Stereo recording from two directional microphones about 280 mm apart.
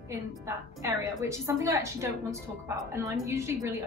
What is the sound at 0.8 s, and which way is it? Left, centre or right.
A woman's voice, centre.